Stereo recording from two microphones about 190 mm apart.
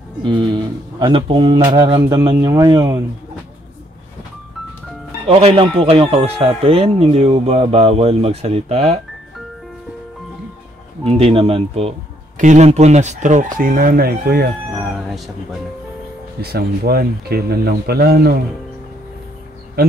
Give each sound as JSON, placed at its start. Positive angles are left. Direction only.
{"t": 0.9, "sound": "speech", "side_deg": -25}
{"t": 5.2, "sound": "speech", "side_deg": -35}
{"t": 11.1, "sound": "speech", "side_deg": -30}
{"t": 16.3, "sound": "speech", "side_deg": -55}